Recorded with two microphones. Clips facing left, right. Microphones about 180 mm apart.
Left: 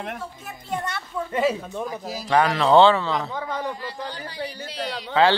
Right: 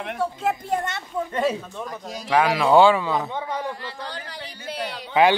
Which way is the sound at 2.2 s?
5° right (ahead or behind).